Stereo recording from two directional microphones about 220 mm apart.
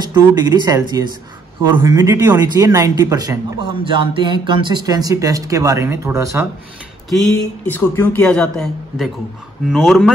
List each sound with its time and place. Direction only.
0.0 s speech: 20° right (ahead or behind)
7.1 s speech: centre (ahead or behind)